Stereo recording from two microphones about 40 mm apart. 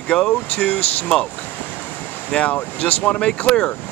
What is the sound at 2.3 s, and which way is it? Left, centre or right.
Speech, left.